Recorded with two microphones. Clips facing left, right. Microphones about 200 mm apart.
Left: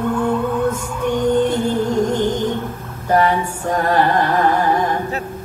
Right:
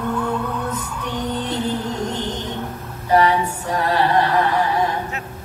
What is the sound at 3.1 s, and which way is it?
Carnatic music, 50° left (ahead or behind).